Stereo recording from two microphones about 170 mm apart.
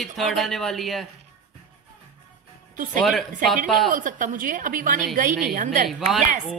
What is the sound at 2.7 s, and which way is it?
A woman's voice, 50° right (ahead or behind).